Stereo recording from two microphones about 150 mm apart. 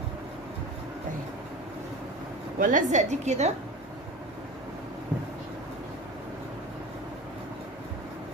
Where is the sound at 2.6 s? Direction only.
55° right (ahead or behind).